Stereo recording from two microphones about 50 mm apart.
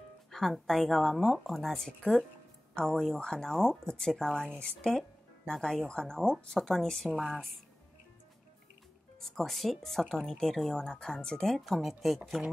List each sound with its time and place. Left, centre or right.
0.3 s speech: centre
6.5 s speech: centre
7.2 s speech: centre
9.2 s speech: centre
11.5 s speech: centre